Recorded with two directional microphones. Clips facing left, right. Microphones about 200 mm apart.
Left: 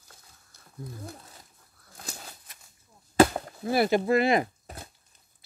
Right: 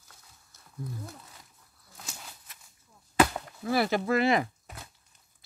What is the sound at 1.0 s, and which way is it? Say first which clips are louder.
Wild animals: left 3 dB; 35° left (ahead or behind).